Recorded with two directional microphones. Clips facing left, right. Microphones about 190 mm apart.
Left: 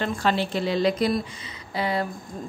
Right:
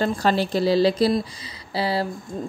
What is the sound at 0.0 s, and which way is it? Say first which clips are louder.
Speech: right 3 dB; 35° right (ahead or behind).